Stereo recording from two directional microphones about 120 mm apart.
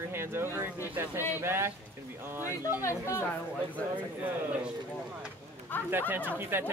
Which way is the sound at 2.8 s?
25° left (ahead or behind).